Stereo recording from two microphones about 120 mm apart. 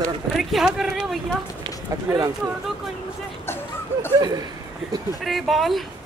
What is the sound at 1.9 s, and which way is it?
Speech, 30° right (ahead or behind).